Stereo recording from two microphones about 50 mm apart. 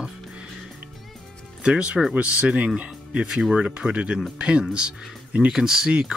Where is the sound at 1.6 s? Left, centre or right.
Right.